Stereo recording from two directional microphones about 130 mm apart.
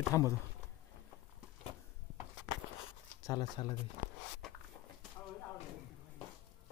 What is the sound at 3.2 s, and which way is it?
Speech, 30° left (ahead or behind).